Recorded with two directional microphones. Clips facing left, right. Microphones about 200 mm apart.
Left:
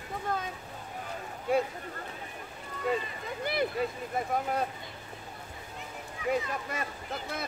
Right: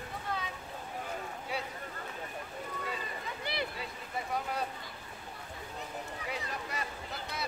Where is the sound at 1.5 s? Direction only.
50° left (ahead or behind).